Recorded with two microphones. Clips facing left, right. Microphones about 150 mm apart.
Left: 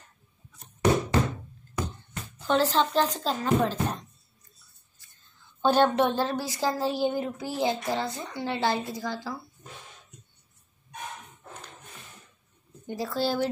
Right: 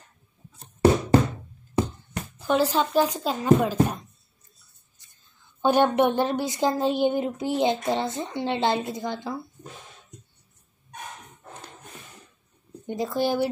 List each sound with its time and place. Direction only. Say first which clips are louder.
1.8 s music: right 8 dB; 25° right (ahead or behind)
2.3 s speech: right 1 dB; 10° right (ahead or behind)
5.6 s speech: right 2 dB; 15° right (ahead or behind)
12.8 s speech: right 3 dB; 20° right (ahead or behind)